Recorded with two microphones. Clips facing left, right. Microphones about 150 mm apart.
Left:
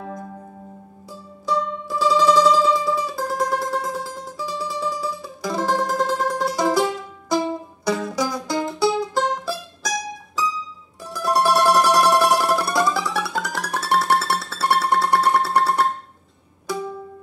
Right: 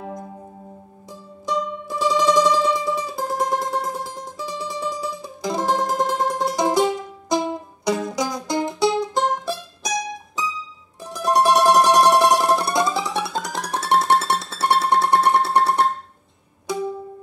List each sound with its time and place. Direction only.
1.4 s music: 15° right (ahead or behind)